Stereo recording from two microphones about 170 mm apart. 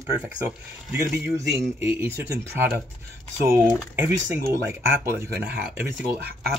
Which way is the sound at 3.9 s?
10° right (ahead or behind).